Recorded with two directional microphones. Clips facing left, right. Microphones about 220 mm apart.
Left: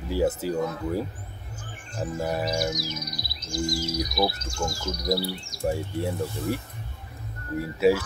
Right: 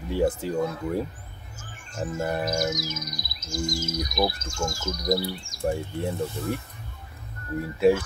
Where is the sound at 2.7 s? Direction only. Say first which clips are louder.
Even; 45° right (ahead or behind).